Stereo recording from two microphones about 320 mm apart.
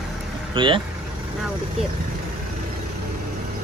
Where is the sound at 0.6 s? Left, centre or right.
Centre.